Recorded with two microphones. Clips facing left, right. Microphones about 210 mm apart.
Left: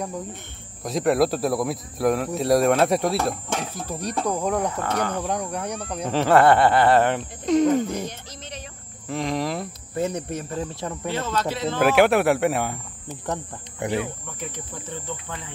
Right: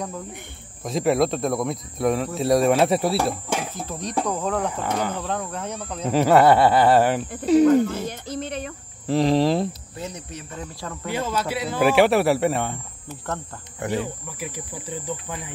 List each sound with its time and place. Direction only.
0.8 s speech: centre (ahead or behind)
3.7 s speech: 10° left (ahead or behind)
4.6 s speech: 10° right (ahead or behind)
5.2 s speech: 15° left (ahead or behind)
6.0 s speech: 10° right (ahead or behind)
7.8 s speech: 15° left (ahead or behind)
8.3 s speech: 55° right (ahead or behind)
9.0 s speech: 30° right (ahead or behind)
9.9 s speech: 55° left (ahead or behind)
10.7 s speech: 25° left (ahead or behind)
11.1 s speech: 10° right (ahead or behind)
11.8 s speech: centre (ahead or behind)
13.3 s speech: 15° left (ahead or behind)
14.2 s speech: 5° right (ahead or behind)